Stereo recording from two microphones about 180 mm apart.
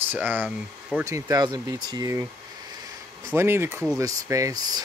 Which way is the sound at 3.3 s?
15° right (ahead or behind).